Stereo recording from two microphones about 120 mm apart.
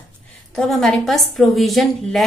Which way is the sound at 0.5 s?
5° left (ahead or behind).